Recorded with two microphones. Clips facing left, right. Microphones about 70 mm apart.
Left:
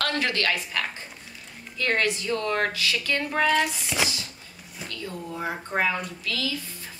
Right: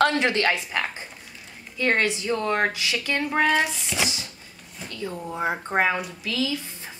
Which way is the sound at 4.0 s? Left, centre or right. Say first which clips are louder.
Even; centre.